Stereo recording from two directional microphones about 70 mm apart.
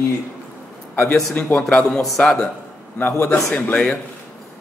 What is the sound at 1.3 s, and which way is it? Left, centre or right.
A man's voice, centre.